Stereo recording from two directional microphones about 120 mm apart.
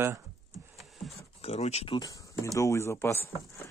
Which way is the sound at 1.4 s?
60° left (ahead or behind).